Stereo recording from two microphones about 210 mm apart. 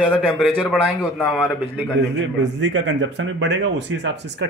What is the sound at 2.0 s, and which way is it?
Speech, 55° right (ahead or behind).